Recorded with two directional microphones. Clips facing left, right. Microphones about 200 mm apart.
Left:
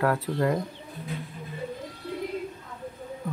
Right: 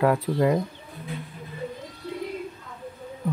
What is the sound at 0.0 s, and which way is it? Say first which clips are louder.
Speech: right 4 dB; 15° right (ahead or behind).